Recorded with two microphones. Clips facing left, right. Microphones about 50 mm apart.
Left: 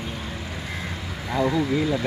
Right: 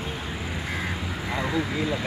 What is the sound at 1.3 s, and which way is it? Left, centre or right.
Speech, centre.